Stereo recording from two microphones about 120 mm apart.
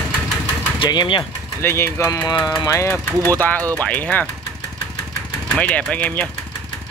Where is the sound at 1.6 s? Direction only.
20° left (ahead or behind).